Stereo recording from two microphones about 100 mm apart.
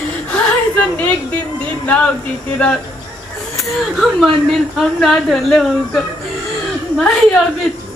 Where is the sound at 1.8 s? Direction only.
15° left (ahead or behind).